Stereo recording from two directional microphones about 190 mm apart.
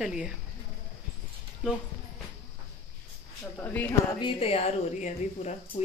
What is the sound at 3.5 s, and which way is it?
Speech, 10° left (ahead or behind).